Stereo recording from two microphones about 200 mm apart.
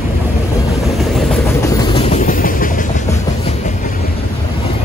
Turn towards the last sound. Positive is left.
turn(degrees=40)  # may be behind; listen again after turning